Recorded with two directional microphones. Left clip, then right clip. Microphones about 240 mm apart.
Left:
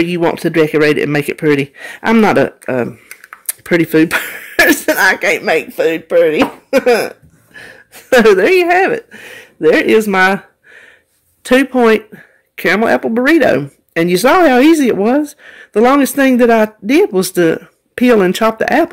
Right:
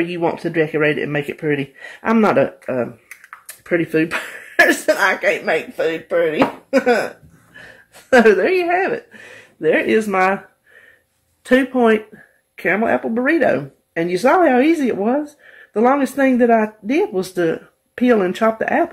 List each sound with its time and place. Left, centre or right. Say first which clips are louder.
0.0 s speech: left 6 dB; left
11.4 s speech: left 5 dB; left